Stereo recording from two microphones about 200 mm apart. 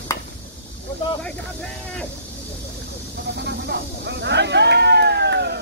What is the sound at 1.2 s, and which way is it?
Speech, 5° left (ahead or behind).